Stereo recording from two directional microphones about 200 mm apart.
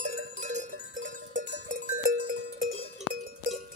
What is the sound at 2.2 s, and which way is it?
Music, 45° right (ahead or behind).